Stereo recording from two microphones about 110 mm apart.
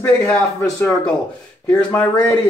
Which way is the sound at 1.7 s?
15° left (ahead or behind).